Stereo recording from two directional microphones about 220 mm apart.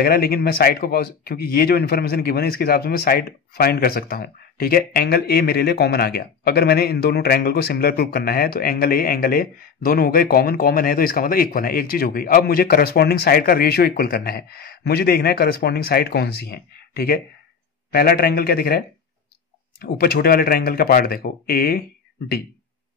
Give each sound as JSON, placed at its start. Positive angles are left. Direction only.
{"t": 0.0, "sound": "a man's voice", "side_deg": 45}